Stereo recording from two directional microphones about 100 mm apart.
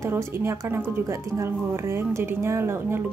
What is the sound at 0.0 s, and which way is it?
Speech, 25° right (ahead or behind).